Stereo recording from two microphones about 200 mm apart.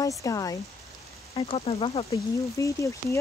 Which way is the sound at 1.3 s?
30° left (ahead or behind).